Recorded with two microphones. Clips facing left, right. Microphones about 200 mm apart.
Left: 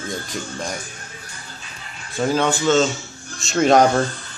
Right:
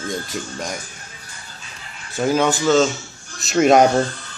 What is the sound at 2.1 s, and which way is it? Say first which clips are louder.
Speech: right 1 dB; 5° right (ahead or behind).